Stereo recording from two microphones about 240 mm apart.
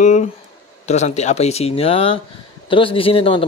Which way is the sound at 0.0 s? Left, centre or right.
Left.